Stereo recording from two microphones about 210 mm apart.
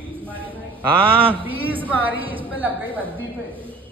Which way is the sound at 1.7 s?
10° right (ahead or behind).